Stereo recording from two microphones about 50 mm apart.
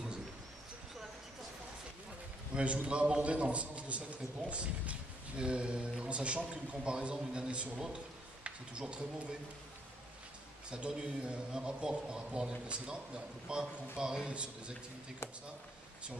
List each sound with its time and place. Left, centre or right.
2.5 s a man's voice: right
10.7 s a man's voice: centre